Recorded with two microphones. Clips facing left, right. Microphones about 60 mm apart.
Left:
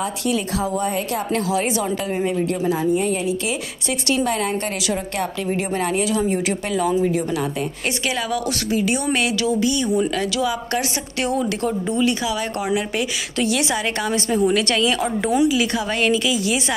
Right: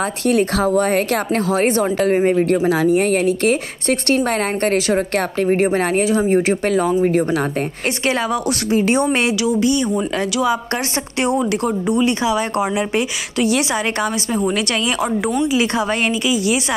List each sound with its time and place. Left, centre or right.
0.3 s a woman's voice: right
1.9 s a woman's voice: right
2.6 s a woman's voice: right
4.1 s a woman's voice: right
6.7 s a woman's voice: right
8.1 s speech: right
9.4 s a woman's voice: right